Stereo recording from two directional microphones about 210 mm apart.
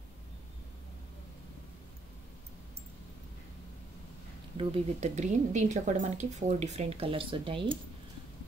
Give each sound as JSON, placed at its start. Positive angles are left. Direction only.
{"t": 4.6, "sound": "speech", "side_deg": -30}